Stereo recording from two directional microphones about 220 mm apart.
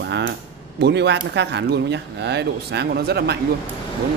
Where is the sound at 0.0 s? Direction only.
55° right (ahead or behind).